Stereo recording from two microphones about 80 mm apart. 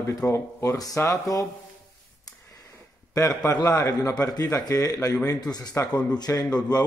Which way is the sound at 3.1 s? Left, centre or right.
Left.